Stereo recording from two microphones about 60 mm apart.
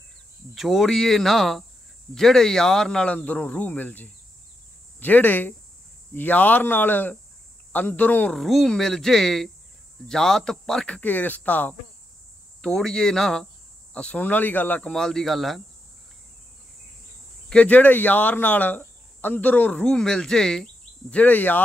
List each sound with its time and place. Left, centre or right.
0.6 s speech: centre
3.2 s speech: left
8.3 s speech: centre
10.9 s speech: left
12.6 s speech: centre
13.9 s speech: centre
14.2 s speech: left
14.8 s speech: centre
17.5 s speech: left
19.8 s speech: centre
21.1 s speech: left